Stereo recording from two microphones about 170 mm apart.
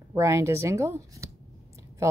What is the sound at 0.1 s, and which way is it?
Speech, 15° right (ahead or behind).